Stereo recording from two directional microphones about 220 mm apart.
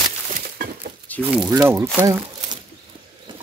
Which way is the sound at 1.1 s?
5° left (ahead or behind).